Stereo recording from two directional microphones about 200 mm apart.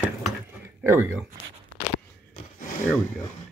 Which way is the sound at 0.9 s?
10° right (ahead or behind).